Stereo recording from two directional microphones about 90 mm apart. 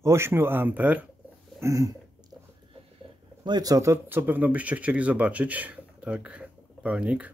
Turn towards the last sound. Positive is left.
turn(degrees=-15)  # may be behind; listen again after turning